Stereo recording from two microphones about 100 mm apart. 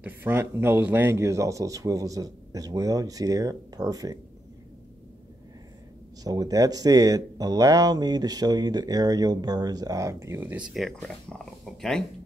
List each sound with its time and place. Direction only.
0.0 s speech: 20° right (ahead or behind); by 4.2 s 40° right (ahead or behind)
6.2 s speech: 35° right (ahead or behind)
10.4 s speech: 10° right (ahead or behind)
11.1 s speech: 5° left (ahead or behind)